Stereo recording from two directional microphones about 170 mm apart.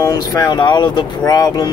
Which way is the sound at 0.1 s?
25° left (ahead or behind).